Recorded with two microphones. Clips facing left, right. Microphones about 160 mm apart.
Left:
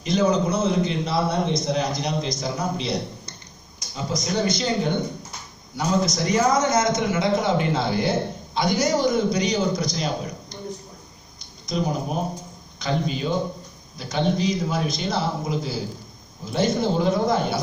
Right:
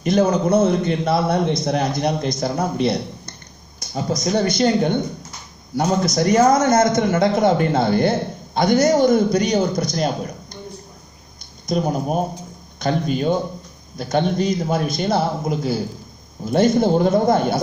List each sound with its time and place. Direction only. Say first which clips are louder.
0.0 s a man's voice: right 3 dB; 55° right (ahead or behind)
11.6 s a man's voice: right 4 dB; 50° right (ahead or behind)